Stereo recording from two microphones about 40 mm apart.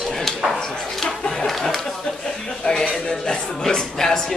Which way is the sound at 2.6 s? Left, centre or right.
Centre.